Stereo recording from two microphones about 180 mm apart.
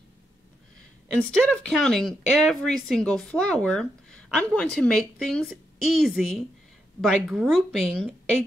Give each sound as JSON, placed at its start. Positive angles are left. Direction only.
{"t": 1.1, "sound": "speech", "side_deg": 5}